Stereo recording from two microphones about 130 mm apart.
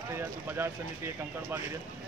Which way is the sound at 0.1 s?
20° right (ahead or behind).